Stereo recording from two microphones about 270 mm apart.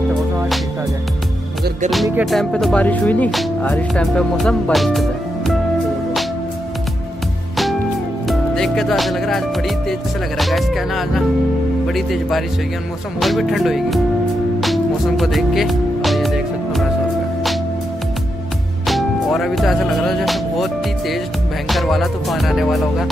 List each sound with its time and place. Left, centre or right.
2.0 s music: centre
8.3 s music: centre
18.9 s music: centre